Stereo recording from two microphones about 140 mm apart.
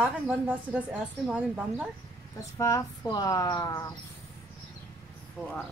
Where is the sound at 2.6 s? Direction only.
25° left (ahead or behind).